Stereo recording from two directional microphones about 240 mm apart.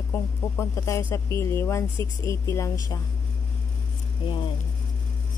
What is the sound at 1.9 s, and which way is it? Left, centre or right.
Speech, centre.